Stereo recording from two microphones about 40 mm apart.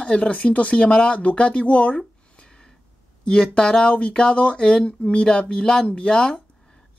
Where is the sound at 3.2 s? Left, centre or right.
Left.